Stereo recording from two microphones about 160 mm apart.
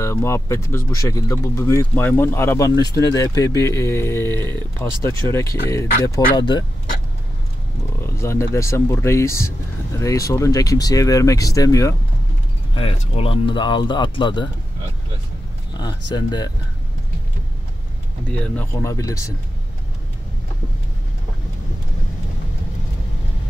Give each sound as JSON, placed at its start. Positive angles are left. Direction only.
{"t": 0.0, "sound": "speech", "side_deg": 15}
{"t": 8.0, "sound": "speech", "side_deg": 15}
{"t": 12.7, "sound": "speech", "side_deg": 40}
{"t": 15.7, "sound": "speech", "side_deg": 25}
{"t": 18.3, "sound": "speech", "side_deg": 10}